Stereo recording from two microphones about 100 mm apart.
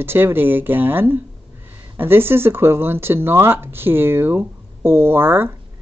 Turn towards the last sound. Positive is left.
turn(degrees=-20)  # may be behind; listen again after turning